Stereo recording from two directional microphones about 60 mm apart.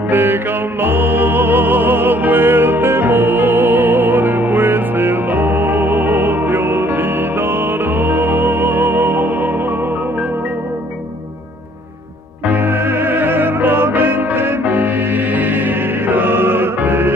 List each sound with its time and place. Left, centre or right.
0.1 s music: right
12.4 s music: right